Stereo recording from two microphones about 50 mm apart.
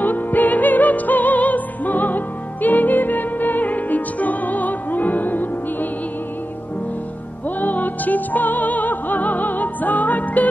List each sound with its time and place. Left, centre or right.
0.0 s music: left
7.4 s music: left